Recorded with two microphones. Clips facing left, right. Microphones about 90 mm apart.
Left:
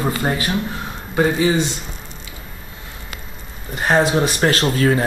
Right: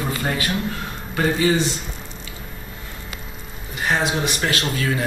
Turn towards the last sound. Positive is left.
turn(degrees=35)  # may be behind; listen again after turning